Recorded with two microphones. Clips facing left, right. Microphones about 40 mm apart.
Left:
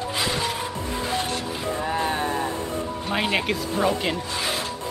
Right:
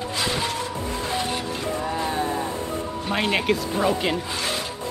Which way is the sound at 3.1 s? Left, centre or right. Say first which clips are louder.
Right 2 dB; centre.